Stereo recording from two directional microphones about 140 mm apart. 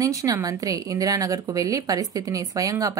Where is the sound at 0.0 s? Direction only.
25° right (ahead or behind).